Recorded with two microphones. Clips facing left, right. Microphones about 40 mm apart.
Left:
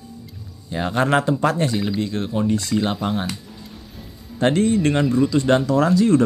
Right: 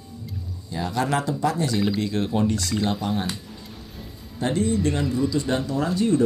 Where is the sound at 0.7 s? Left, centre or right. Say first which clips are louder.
Left 5 dB; left.